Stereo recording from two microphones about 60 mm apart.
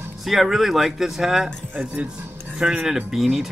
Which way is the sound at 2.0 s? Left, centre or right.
Centre.